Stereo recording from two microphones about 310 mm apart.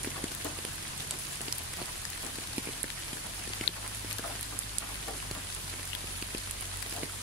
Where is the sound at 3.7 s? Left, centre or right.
Left.